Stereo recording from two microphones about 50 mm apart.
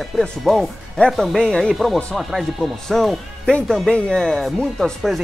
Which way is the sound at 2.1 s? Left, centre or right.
Centre.